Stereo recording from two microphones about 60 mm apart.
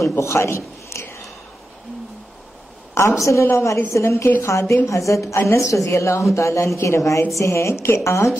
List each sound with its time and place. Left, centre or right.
0.2 s a man's voice: left
2.9 s a woman's voice: left